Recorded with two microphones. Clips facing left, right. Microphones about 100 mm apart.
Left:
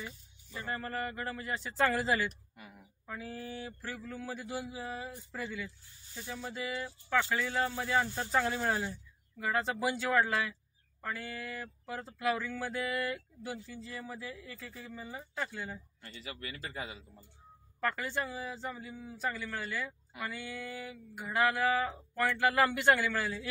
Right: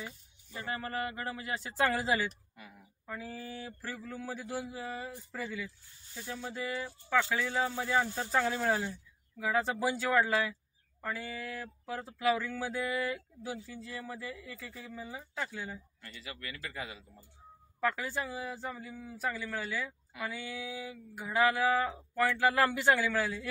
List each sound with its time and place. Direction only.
0.7 s speech: 5° right (ahead or behind)
16.0 s a man's voice: 25° left (ahead or behind)
17.7 s speech: 5° right (ahead or behind)